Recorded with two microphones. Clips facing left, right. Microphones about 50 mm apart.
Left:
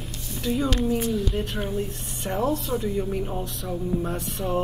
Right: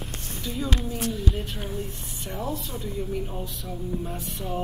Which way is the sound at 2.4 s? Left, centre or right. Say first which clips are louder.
Left 6 dB; left.